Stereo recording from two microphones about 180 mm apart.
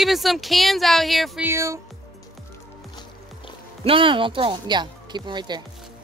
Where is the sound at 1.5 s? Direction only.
15° right (ahead or behind).